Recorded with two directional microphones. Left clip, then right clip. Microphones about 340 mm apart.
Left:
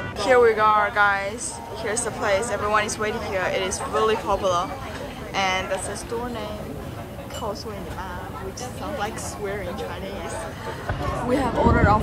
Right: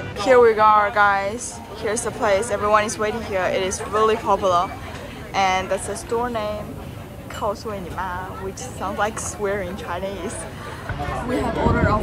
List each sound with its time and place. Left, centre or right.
0.2 s speech: centre
8.8 s speech: centre
11.3 s speech: centre